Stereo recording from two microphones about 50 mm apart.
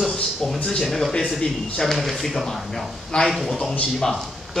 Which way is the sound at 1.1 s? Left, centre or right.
Centre.